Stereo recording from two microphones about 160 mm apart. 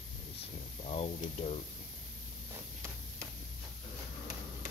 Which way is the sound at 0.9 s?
40° left (ahead or behind).